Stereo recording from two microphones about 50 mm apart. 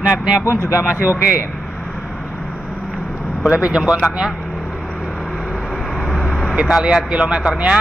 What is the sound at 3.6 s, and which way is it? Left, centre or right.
Speech, centre.